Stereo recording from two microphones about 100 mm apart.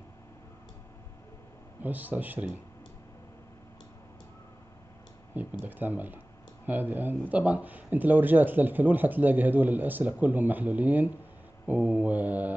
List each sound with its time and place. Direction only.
1.8 s speech: 15° right (ahead or behind)
5.3 s speech: 15° right (ahead or behind)